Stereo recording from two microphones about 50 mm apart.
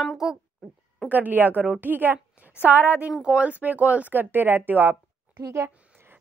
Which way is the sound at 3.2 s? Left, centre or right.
Right.